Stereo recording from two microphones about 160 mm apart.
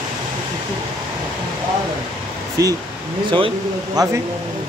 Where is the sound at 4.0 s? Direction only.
25° right (ahead or behind).